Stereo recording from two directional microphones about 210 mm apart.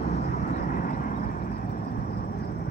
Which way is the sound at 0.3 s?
40° left (ahead or behind).